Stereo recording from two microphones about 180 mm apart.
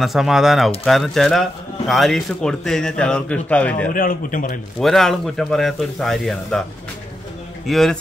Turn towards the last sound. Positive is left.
turn(degrees=0)  # may be behind; listen again after turning